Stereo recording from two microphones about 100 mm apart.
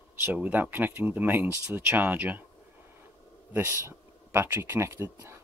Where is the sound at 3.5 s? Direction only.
25° right (ahead or behind).